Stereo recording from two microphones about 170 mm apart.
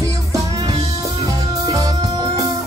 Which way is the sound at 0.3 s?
20° right (ahead or behind).